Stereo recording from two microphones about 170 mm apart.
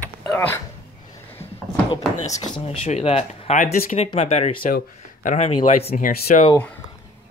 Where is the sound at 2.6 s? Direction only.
40° left (ahead or behind).